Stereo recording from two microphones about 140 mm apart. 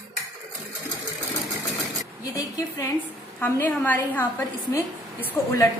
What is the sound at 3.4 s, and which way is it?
A woman's voice, 15° left (ahead or behind).